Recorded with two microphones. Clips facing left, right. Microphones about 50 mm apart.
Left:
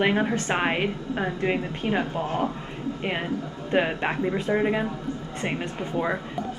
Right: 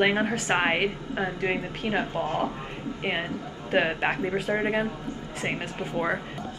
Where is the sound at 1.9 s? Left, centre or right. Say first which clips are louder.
Left 1 dB; right.